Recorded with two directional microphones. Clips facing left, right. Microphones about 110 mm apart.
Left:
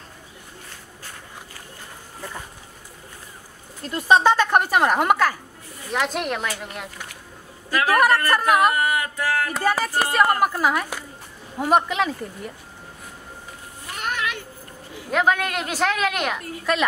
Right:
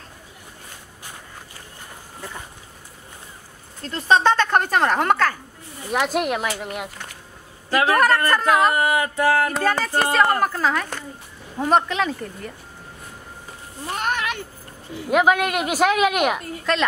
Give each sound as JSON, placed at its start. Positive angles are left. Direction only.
{"t": 3.8, "sound": "speech", "side_deg": 10}
{"t": 5.9, "sound": "speech", "side_deg": -5}
{"t": 7.7, "sound": "music", "side_deg": -25}
{"t": 8.3, "sound": "speech", "side_deg": 10}
{"t": 8.7, "sound": "music", "side_deg": -25}
{"t": 9.6, "sound": "speech", "side_deg": 10}
{"t": 13.8, "sound": "a sound", "side_deg": -40}
{"t": 15.0, "sound": "speech", "side_deg": -10}
{"t": 16.7, "sound": "speech", "side_deg": 5}